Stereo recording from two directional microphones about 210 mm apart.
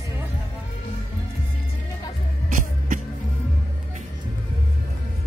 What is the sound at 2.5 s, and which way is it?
Music, 40° right (ahead or behind).